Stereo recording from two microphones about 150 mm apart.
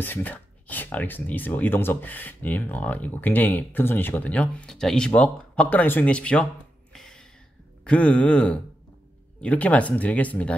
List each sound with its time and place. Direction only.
0.0 s speech: 10° left (ahead or behind)
6.9 s gasp: 5° left (ahead or behind)
7.8 s speech: 10° left (ahead or behind)